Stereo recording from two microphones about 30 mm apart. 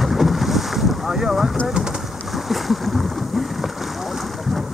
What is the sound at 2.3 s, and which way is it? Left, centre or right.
Boat, centre.